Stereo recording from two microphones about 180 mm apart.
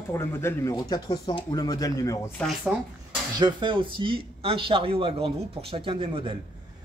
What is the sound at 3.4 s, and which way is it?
Speech, 25° right (ahead or behind).